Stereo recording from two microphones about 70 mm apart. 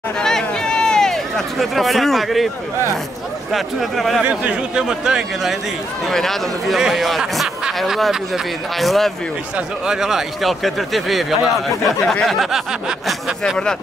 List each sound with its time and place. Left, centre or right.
0.2 s a sound: centre
3.5 s speech: centre
4.2 s a man's voice: right; by 13.1 s centre